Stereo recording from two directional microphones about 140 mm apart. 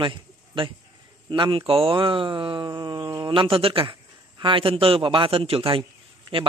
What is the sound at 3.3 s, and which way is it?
A man's voice, 40° right (ahead or behind).